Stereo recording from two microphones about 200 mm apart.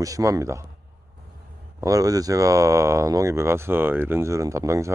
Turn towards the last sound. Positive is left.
turn(degrees=-15)  # may be behind; listen again after turning